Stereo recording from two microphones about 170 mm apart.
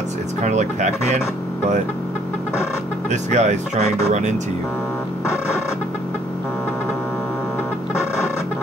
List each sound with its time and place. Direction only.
0.4 s speech: 45° right (ahead or behind)
3.1 s speech: 45° right (ahead or behind)